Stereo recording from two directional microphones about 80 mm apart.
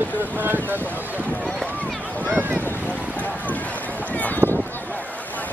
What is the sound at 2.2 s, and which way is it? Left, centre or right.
Boat, right.